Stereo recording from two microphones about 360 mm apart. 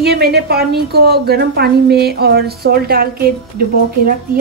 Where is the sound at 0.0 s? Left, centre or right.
Right.